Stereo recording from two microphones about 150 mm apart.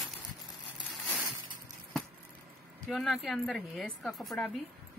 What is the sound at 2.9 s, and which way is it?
Speech, centre (ahead or behind).